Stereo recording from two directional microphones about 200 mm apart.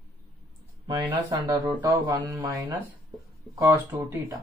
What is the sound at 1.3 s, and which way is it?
Speech, 20° right (ahead or behind).